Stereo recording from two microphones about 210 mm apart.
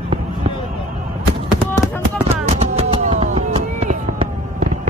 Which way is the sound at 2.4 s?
30° right (ahead or behind).